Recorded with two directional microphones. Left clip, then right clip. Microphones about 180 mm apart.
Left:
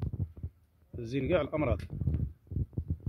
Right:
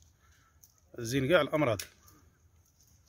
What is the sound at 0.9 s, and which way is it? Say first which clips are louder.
Speech: right 3 dB; 5° left (ahead or behind).